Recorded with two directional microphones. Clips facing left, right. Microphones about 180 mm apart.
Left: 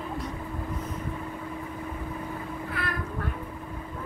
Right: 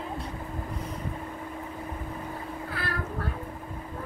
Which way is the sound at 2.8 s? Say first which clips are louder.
Left 1 dB; 30° right (ahead or behind).